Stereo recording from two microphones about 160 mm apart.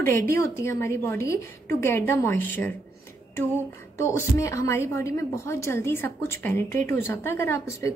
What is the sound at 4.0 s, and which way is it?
A woman's voice, 15° left (ahead or behind).